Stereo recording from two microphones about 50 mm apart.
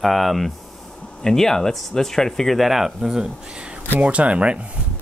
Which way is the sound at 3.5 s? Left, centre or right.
Right.